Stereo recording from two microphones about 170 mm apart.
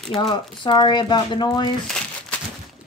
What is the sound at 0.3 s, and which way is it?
Speech, 30° left (ahead or behind).